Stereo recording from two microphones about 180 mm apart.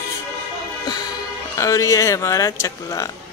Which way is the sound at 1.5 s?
15° left (ahead or behind).